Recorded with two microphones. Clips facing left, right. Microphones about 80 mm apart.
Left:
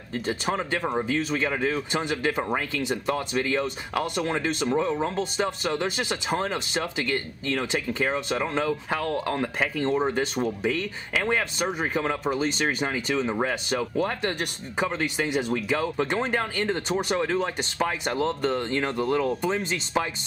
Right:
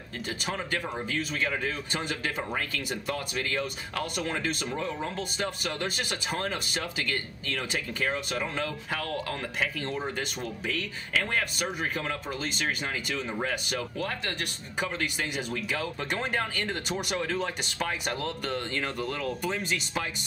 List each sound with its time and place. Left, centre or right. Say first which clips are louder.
0.2 s speech: left 6 dB; left
14.8 s speech: left 5 dB; left
18.9 s speech: left 7 dB; left
19.1 s speech: left 7 dB; left